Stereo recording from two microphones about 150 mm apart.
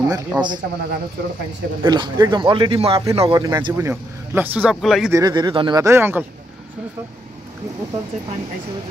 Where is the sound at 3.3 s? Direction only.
25° right (ahead or behind).